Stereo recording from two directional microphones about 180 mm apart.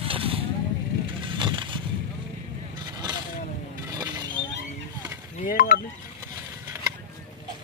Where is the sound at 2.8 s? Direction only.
25° right (ahead or behind).